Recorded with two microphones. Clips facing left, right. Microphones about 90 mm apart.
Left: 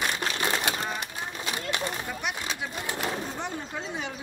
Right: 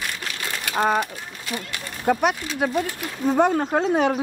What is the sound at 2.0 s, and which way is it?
Speech, 60° right (ahead or behind).